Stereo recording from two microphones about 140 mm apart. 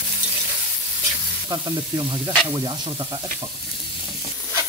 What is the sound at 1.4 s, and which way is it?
Speech, 30° right (ahead or behind).